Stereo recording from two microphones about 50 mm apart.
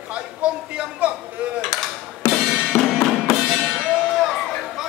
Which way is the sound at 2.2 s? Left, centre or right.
Left.